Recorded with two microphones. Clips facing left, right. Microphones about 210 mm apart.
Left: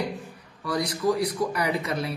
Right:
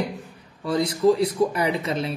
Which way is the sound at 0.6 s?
25° right (ahead or behind).